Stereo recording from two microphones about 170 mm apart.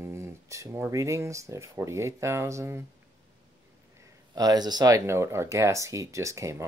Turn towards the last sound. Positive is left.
turn(degrees=-20)  # may be behind; listen again after turning